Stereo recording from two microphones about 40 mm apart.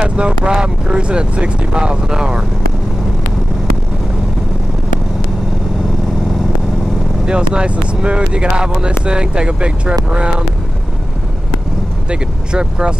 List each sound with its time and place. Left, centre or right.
0.0 s speech: right
7.2 s speech: right
12.1 s speech: right